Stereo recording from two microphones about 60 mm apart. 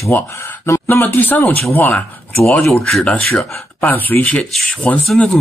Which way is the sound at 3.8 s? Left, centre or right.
Left.